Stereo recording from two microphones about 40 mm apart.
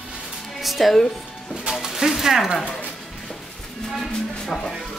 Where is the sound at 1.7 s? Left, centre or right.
Centre.